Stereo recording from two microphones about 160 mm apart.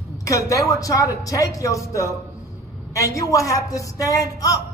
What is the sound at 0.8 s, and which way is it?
A woman's voice, 20° left (ahead or behind).